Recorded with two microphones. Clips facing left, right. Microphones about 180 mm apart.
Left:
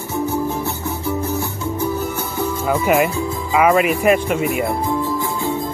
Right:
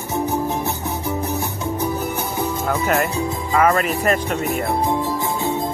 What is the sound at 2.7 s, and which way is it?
Music, 10° left (ahead or behind).